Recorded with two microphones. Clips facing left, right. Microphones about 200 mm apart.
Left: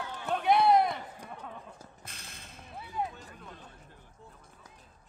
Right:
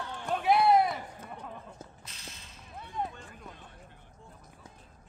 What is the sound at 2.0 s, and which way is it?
Whip, 55° left (ahead or behind).